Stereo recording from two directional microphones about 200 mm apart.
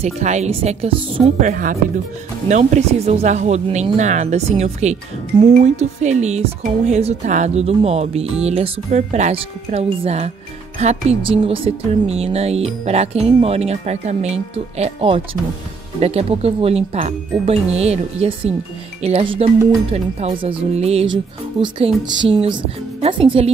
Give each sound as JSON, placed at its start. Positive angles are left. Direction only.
{"t": 0.0, "sound": "speech", "side_deg": -35}